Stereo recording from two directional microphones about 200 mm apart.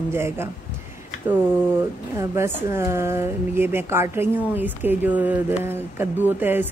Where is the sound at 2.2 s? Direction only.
15° right (ahead or behind).